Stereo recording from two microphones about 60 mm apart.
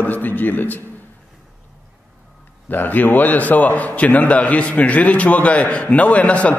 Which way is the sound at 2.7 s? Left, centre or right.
Left.